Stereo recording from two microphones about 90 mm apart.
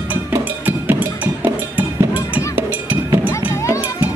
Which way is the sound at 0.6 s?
20° right (ahead or behind).